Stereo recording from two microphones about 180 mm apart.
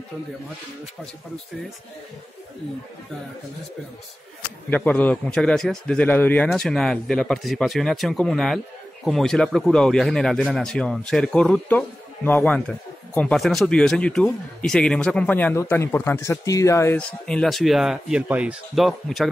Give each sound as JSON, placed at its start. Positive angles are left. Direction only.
{"t": 4.6, "sound": "speech", "side_deg": 10}